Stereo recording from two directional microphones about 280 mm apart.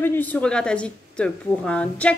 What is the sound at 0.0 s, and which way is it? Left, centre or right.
Speech, centre.